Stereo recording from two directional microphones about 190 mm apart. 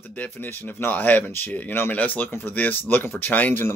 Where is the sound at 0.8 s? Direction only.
10° left (ahead or behind).